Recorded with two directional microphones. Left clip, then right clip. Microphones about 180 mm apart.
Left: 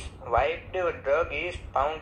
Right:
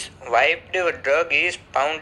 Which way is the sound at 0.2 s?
35° right (ahead or behind).